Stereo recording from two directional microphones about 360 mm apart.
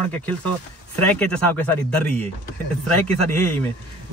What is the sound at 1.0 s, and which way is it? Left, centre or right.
Speech, centre.